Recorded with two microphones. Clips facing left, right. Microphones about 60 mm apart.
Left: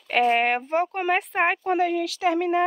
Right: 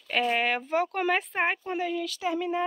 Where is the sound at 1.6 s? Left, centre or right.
Left.